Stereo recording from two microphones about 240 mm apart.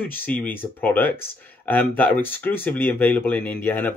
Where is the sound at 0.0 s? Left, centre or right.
Centre.